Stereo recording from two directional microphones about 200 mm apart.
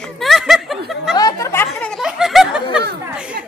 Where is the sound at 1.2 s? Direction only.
15° left (ahead or behind).